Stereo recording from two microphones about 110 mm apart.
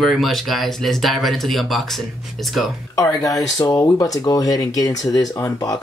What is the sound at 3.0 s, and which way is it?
Speech, 30° left (ahead or behind).